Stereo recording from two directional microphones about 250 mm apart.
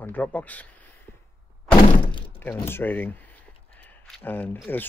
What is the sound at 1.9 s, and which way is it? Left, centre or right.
Thunk, centre.